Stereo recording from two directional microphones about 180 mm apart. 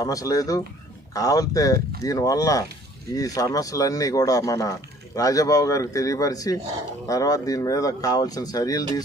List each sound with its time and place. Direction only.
0.0 s speech: 20° left (ahead or behind)